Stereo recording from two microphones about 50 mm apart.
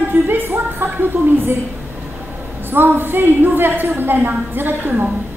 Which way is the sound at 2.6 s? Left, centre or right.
Right.